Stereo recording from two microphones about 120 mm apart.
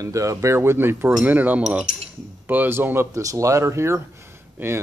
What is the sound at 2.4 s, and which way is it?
Speech, 15° right (ahead or behind).